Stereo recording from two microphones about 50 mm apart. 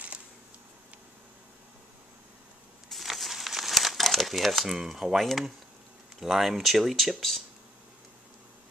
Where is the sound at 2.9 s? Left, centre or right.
Centre.